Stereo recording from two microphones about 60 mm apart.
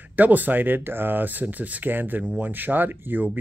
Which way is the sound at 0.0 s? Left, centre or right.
Right.